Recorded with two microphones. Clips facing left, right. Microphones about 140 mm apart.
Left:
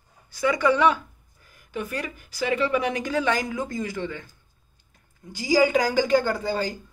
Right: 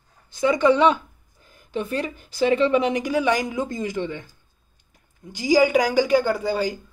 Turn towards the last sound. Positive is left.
turn(degrees=-15)  # may be behind; listen again after turning